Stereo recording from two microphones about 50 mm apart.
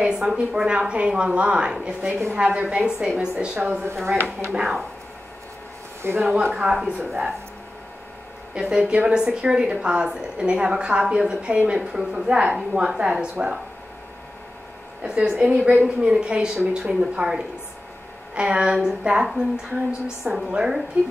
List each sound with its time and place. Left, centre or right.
0.0 s a woman's voice: centre
0.7 s a woman's voice: right
3.8 s a woman's voice: right
4.6 s a woman's voice: centre
6.0 s speech: right
6.5 s a woman's voice: centre
8.5 s a woman's voice: centre
12.1 s a woman's voice: right
15.0 s a woman's voice: centre
15.3 s a woman's voice: right